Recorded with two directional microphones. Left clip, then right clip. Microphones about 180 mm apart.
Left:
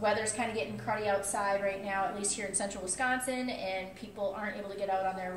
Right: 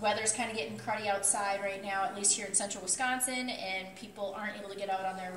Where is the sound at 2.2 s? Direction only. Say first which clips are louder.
Right 1 dB; 15° left (ahead or behind).